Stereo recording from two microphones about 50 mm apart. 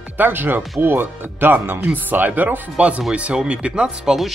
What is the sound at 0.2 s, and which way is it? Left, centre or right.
Speech, right.